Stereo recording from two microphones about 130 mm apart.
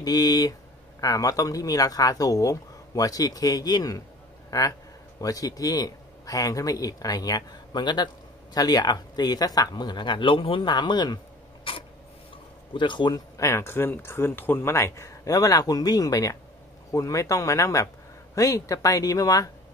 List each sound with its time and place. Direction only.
0.0 s speech: 30° left (ahead or behind)
11.7 s mechanisms: 40° left (ahead or behind)
12.7 s speech: 35° left (ahead or behind)
13.4 s speech: 20° left (ahead or behind)